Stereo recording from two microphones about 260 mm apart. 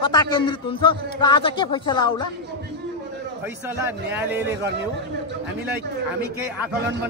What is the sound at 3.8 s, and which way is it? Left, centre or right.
Speech, centre.